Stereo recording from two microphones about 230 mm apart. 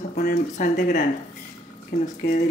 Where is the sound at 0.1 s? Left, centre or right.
Left.